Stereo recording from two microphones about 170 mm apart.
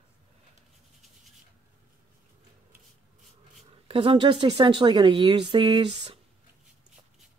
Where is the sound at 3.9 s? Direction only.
30° right (ahead or behind).